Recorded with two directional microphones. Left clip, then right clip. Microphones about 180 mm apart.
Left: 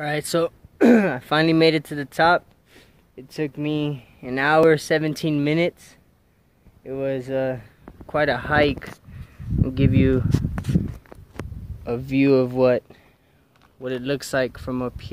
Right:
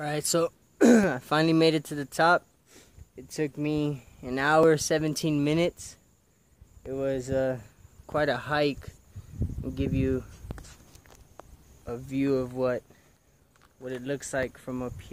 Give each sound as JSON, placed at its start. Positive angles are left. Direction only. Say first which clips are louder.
{"t": 0.0, "sound": "speech", "louder": "left 5 dB", "side_deg": 0}
{"t": 8.1, "sound": "speech", "louder": "left 6 dB", "side_deg": 0}
{"t": 9.7, "sound": "speech", "louder": "left 8 dB", "side_deg": 40}
{"t": 11.8, "sound": "speech", "louder": "left 9 dB", "side_deg": 45}